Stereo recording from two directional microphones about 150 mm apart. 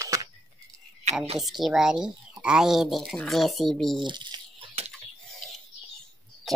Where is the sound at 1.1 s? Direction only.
50° right (ahead or behind).